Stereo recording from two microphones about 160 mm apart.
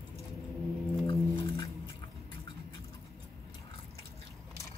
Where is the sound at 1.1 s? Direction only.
30° left (ahead or behind).